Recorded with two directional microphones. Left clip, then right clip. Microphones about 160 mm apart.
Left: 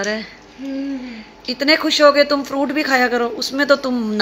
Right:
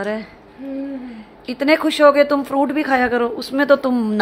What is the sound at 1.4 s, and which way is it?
Speech, 15° right (ahead or behind).